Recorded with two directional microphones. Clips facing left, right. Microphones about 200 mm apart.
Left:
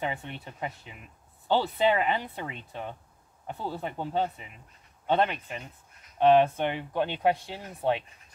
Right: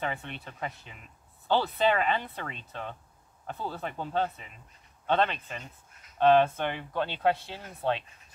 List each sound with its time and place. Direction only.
0.0 s speech: 15° left (ahead or behind)